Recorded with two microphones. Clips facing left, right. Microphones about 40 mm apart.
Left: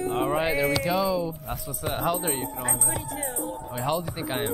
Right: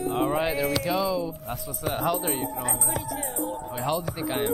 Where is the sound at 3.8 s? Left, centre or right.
Centre.